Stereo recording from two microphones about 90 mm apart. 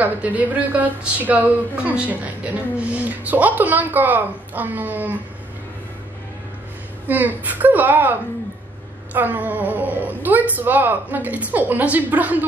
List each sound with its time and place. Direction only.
0.0 s a woman's voice: 15° right (ahead or behind)
7.1 s a woman's voice: 20° right (ahead or behind)